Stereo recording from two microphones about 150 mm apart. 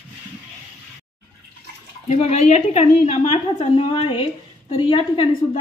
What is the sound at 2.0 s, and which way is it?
A woman's voice, 45° left (ahead or behind).